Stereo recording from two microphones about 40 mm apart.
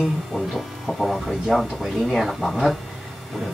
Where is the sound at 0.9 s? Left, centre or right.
Centre.